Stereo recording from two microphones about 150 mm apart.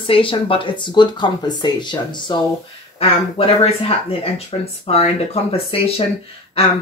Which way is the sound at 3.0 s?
40° left (ahead or behind).